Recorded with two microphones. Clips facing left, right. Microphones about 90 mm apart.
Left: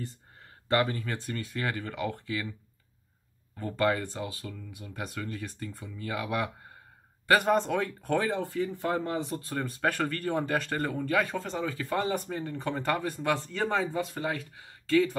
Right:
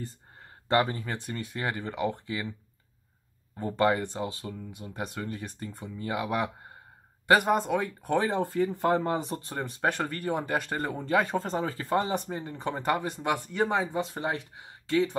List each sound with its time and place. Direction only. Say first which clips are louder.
0.7 s speech: right 1 dB; 30° right (ahead or behind)
3.5 s speech: right 2 dB; 25° right (ahead or behind)
8.4 s speech: right 4 dB; 40° right (ahead or behind)
11.3 s speech: right 3 dB; 40° right (ahead or behind)
12.0 s speech: even; 20° right (ahead or behind)